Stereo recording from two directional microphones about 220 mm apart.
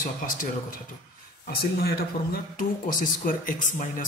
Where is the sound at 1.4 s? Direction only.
45° left (ahead or behind).